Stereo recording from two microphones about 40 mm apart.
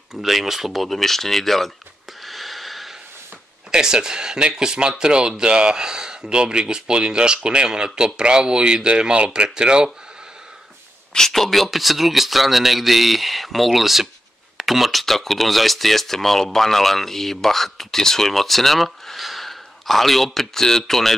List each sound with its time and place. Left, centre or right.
0.1 s speech: centre
2.2 s a sound: centre
3.7 s speech: centre
11.1 s speech: centre